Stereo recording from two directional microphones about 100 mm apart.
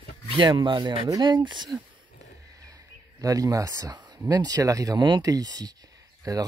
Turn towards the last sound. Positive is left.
turn(degrees=-35)  # may be behind; listen again after turning